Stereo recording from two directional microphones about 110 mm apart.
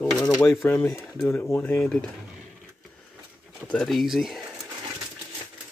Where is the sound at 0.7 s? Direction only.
20° left (ahead or behind).